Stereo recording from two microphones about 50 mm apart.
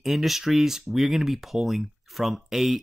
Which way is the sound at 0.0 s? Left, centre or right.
Centre.